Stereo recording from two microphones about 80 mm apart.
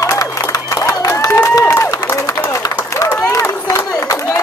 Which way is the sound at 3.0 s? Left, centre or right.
Left.